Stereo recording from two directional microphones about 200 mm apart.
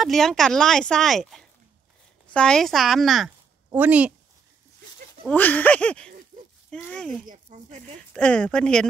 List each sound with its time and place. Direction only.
0.0 s speech: centre (ahead or behind)
5.2 s speech: 10° left (ahead or behind)
7.2 s speech: 40° right (ahead or behind)
8.1 s speech: 5° left (ahead or behind)